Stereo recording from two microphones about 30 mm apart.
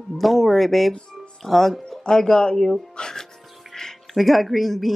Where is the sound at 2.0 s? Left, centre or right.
Left.